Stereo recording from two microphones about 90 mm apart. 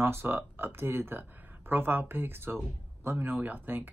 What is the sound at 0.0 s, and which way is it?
Speech, 25° right (ahead or behind).